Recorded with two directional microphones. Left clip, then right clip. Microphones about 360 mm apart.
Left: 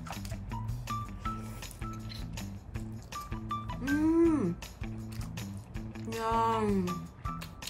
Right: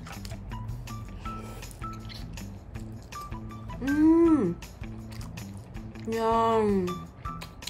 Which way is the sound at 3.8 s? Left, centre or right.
Centre.